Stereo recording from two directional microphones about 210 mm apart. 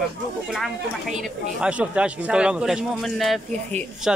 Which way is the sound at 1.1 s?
5° right (ahead or behind).